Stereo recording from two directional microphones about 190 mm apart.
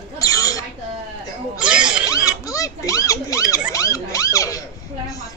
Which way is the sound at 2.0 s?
15° left (ahead or behind).